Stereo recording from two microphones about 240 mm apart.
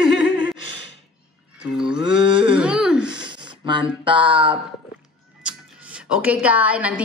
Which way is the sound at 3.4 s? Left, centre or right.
Centre.